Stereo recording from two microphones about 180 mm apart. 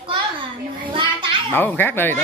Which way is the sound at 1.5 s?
10° left (ahead or behind).